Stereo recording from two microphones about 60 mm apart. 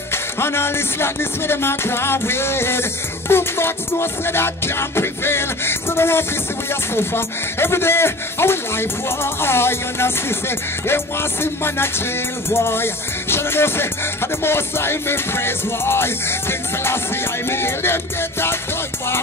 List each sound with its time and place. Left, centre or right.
0.1 s music: left